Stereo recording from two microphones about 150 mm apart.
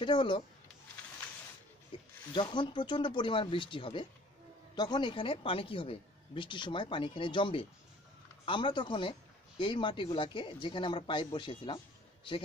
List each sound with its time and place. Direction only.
0.0 s a woman's voice: 30° left (ahead or behind)
2.3 s a woman's voice: 30° left (ahead or behind)